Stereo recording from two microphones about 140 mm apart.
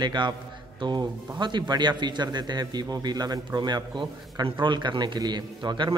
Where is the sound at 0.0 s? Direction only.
30° right (ahead or behind).